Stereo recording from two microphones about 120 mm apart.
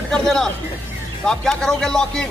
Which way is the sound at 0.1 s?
5° left (ahead or behind).